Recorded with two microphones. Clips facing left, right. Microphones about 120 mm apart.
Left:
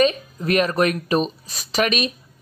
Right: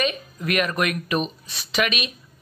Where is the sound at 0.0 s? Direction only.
35° left (ahead or behind).